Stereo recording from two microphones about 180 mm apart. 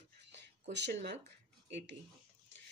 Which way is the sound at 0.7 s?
75° right (ahead or behind).